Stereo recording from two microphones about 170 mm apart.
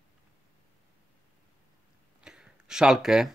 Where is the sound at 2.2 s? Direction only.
5° right (ahead or behind).